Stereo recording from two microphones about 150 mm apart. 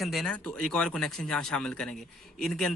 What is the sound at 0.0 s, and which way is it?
Speech, centre (ahead or behind).